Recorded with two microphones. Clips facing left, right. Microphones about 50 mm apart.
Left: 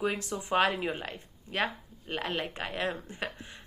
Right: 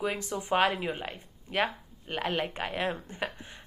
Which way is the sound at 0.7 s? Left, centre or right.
Centre.